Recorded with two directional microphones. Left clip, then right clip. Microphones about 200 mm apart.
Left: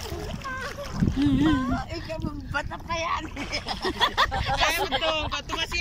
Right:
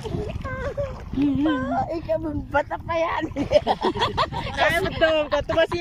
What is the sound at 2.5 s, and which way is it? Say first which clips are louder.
Speech: right 7 dB; 40° right (ahead or behind).